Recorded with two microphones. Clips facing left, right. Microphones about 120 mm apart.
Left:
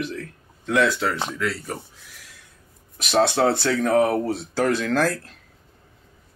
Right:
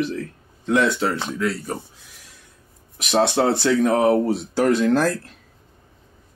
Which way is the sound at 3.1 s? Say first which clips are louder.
Right 1 dB; 20° right (ahead or behind).